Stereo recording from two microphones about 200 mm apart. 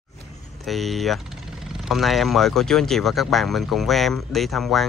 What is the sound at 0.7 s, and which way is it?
Speech, centre (ahead or behind).